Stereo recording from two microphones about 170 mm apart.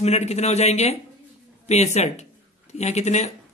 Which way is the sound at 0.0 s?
40° left (ahead or behind).